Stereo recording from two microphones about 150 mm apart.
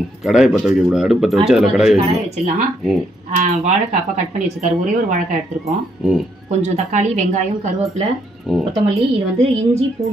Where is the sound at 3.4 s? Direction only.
45° right (ahead or behind).